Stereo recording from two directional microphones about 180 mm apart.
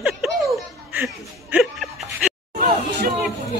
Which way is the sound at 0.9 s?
10° right (ahead or behind).